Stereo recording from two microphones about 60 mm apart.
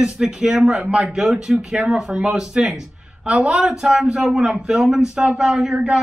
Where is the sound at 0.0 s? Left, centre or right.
Centre.